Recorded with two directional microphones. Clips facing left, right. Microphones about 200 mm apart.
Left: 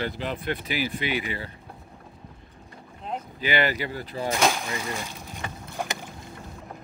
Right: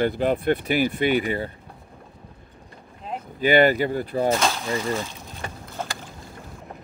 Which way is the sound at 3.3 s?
50° right (ahead or behind).